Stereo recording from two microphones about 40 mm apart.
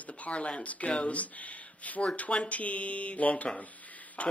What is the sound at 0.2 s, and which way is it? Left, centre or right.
Speech, left.